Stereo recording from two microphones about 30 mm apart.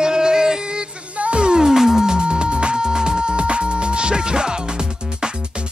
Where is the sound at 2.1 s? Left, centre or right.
Right.